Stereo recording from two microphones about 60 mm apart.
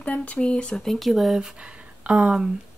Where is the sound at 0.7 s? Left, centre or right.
Centre.